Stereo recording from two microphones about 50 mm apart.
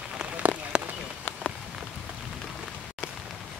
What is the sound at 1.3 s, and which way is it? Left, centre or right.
Rain on surface, left.